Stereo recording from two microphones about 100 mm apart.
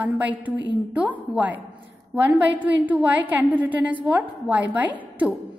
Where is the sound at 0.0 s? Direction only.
15° right (ahead or behind).